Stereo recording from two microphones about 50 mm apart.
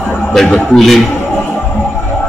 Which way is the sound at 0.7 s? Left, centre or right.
Centre.